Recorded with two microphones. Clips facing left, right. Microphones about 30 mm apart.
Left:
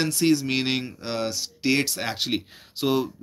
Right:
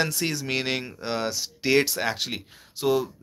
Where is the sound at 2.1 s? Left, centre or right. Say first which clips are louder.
Left 4 dB; centre.